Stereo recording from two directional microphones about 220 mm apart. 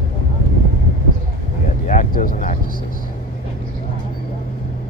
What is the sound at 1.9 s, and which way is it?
Vehicle, 35° left (ahead or behind).